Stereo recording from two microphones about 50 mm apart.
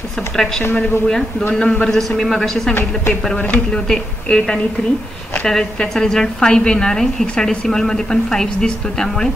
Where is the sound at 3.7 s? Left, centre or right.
Centre.